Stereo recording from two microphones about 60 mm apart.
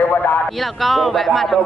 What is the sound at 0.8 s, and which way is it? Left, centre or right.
Speech, centre.